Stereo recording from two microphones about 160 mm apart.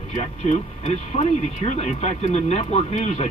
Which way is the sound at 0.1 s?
45° left (ahead or behind).